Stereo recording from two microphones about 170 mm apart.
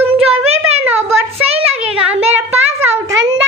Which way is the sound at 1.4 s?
35° right (ahead or behind).